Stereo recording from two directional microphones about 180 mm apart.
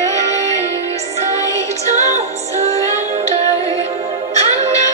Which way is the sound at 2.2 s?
40° right (ahead or behind).